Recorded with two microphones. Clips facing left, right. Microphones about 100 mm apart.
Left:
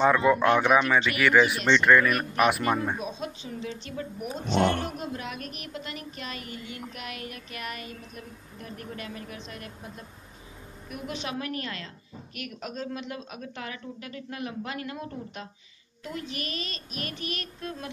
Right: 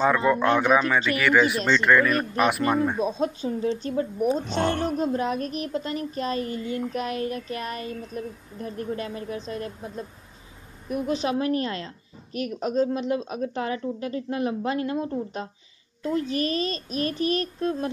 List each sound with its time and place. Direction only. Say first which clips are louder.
0.0 s speech: even; centre (ahead or behind)
3.0 s speech: right 9 dB; 40° right (ahead or behind)